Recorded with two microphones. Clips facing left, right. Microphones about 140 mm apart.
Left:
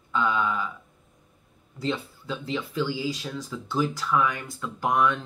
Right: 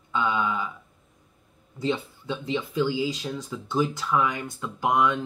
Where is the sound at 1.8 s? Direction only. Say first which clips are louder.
Right 2 dB; 20° right (ahead or behind).